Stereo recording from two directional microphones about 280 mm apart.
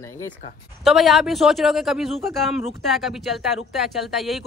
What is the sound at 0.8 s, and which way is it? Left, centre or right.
Speech, centre.